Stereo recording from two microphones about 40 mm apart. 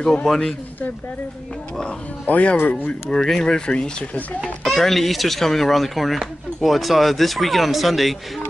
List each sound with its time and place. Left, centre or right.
0.0 s speech: centre
2.2 s speech: left
3.1 s speech: centre
4.7 s speech: centre